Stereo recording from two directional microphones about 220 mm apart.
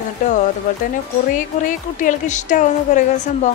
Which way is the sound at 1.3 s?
35° left (ahead or behind).